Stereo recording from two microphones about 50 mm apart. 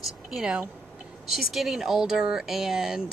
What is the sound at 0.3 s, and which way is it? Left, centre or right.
Speech, centre.